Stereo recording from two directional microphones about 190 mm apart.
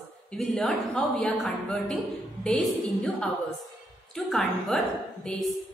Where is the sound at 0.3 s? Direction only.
5° left (ahead or behind).